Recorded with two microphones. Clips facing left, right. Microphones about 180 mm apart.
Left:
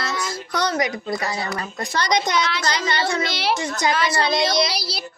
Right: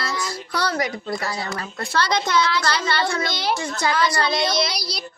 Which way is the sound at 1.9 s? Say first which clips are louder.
Even; 15° left (ahead or behind).